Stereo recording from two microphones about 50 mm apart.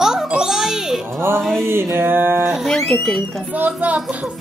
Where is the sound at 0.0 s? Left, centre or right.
Centre.